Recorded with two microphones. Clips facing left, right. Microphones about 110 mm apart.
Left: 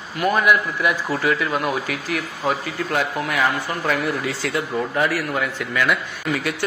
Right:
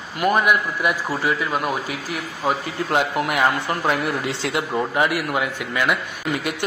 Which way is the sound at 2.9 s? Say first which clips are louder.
Right 3 dB; 20° right (ahead or behind).